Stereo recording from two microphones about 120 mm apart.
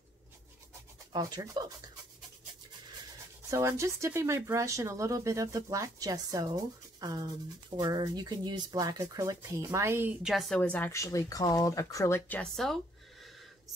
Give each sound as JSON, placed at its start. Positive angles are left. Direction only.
{"t": 1.1, "sound": "speech", "side_deg": -35}
{"t": 3.4, "sound": "speech", "side_deg": -25}
{"t": 10.2, "sound": "a woman's voice", "side_deg": 0}
{"t": 10.9, "sound": "speech", "side_deg": 25}
{"t": 12.3, "sound": "a woman's voice", "side_deg": 5}